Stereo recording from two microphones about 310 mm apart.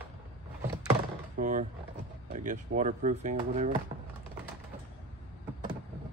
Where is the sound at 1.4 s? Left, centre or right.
Right.